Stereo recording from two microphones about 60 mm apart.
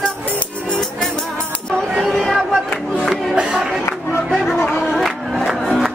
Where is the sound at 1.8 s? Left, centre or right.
Centre.